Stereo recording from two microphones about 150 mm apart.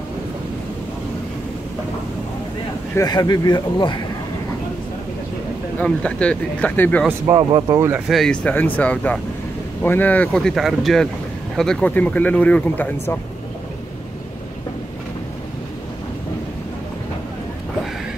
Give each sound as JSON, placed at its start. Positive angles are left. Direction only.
{"t": 2.9, "sound": "a man's voice", "side_deg": 25}
{"t": 5.8, "sound": "speech", "side_deg": 10}
{"t": 7.2, "sound": "speech", "side_deg": -30}
{"t": 8.1, "sound": "speech", "side_deg": 5}